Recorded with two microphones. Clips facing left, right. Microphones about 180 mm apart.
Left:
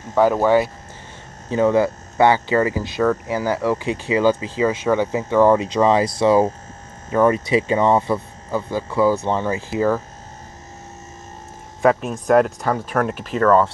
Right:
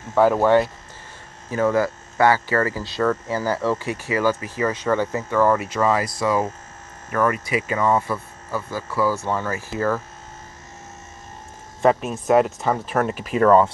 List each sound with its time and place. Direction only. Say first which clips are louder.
0.1 s speech: left 1 dB; centre (ahead or behind)
1.5 s speech: left 3 dB; 20° left (ahead or behind)
11.8 s speech: left 1 dB; centre (ahead or behind)